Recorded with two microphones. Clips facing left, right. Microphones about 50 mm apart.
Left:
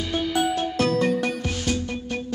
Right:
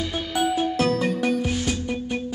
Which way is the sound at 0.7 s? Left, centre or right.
Centre.